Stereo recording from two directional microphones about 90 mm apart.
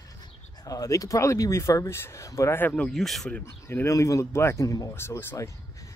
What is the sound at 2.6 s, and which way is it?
Speech, 15° left (ahead or behind).